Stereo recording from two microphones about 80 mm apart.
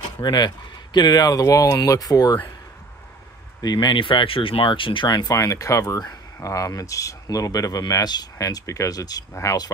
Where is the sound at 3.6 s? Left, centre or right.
Left.